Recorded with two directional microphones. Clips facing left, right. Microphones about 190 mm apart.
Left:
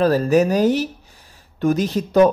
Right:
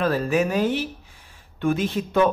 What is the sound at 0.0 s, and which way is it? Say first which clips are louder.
Speech: left 6 dB; 40° left (ahead or behind).